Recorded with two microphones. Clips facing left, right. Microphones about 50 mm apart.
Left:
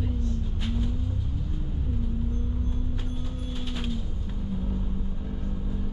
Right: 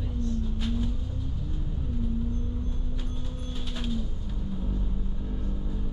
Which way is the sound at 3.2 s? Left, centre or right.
Centre.